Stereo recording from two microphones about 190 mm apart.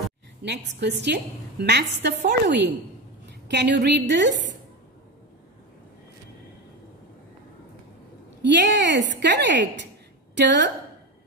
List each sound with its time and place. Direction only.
0.4 s a woman's voice: 65° right (ahead or behind)
8.4 s a woman's voice: 65° right (ahead or behind)